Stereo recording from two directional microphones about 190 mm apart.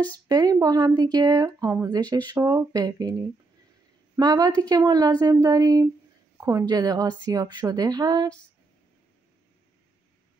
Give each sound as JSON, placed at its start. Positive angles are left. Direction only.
{"t": 0.3, "sound": "speech", "side_deg": -20}
{"t": 4.2, "sound": "speech", "side_deg": -20}